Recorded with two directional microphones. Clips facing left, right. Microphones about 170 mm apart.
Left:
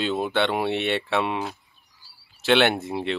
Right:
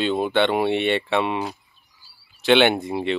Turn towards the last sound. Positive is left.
turn(degrees=0)  # may be behind; listen again after turning